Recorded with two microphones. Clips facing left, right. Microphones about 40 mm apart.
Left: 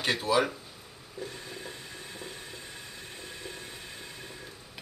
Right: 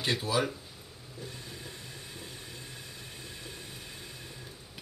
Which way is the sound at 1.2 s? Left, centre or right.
Centre.